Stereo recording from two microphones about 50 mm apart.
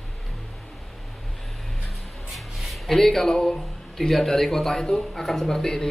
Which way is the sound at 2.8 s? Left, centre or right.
Centre.